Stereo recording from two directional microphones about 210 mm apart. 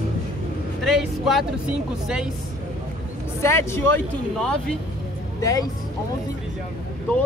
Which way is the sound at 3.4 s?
10° left (ahead or behind).